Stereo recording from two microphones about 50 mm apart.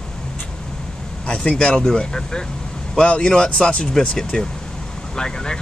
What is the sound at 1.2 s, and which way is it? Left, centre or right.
Speech, centre.